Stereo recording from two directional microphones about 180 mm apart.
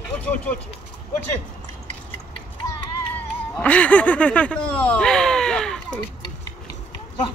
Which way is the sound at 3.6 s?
5° left (ahead or behind).